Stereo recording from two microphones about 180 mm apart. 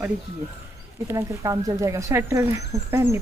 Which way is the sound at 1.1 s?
15° right (ahead or behind).